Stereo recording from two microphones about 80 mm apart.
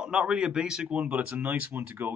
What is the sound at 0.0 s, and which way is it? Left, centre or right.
Speech, centre.